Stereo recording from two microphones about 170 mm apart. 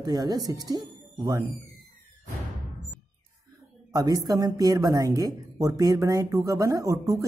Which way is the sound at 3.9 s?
20° right (ahead or behind).